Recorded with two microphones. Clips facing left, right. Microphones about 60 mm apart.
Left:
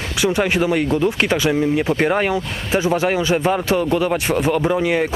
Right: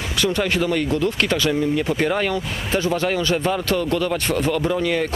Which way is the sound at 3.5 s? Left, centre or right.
Left.